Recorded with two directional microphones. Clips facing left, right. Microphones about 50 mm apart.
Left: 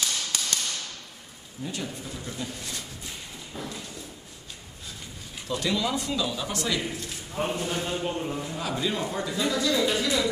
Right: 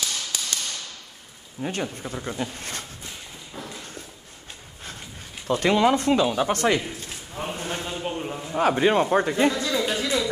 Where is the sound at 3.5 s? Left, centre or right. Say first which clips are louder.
Left 1 dB; centre.